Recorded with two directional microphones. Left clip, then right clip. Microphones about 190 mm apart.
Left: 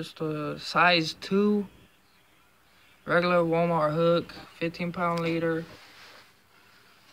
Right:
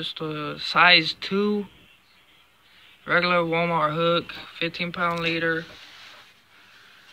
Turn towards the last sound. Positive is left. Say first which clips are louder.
# right 4 dB
turn(degrees=15)  # may be behind; listen again after turning